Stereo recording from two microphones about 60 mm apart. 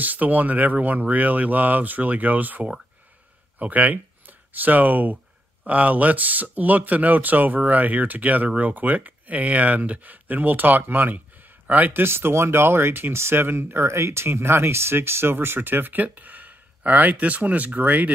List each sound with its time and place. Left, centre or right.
0.0 s speech: right